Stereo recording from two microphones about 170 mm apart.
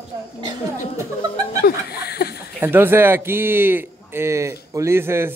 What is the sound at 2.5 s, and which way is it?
A man's voice, 10° right (ahead or behind).